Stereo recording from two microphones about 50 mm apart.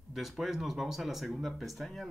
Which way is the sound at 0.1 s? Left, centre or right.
Centre.